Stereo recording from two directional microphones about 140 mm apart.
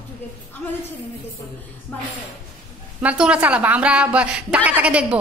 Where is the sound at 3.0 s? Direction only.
10° right (ahead or behind).